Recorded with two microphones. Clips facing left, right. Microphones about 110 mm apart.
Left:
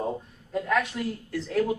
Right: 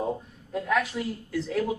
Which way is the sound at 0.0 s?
Centre (ahead or behind).